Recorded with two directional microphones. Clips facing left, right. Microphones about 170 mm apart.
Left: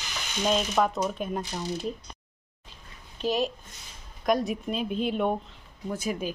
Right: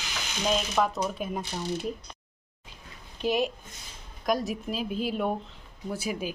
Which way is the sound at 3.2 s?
10° right (ahead or behind).